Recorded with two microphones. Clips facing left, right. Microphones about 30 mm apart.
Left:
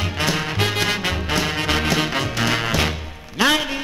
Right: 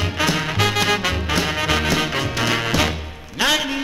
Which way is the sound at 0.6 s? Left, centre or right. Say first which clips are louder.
Right 2 dB; right.